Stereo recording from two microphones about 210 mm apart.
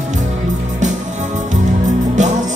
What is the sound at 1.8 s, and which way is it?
Music, 35° right (ahead or behind).